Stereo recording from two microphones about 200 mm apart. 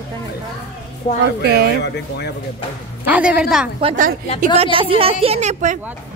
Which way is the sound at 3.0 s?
5° right (ahead or behind).